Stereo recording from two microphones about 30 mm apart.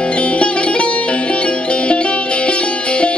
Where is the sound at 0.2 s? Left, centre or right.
Left.